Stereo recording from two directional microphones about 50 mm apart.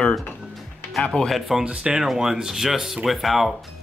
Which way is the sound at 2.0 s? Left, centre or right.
Centre.